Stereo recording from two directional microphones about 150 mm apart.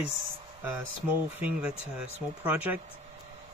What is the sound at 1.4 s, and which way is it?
Speech, 5° right (ahead or behind).